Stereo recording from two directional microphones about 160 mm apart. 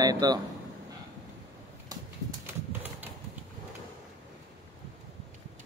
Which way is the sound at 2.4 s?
10° right (ahead or behind).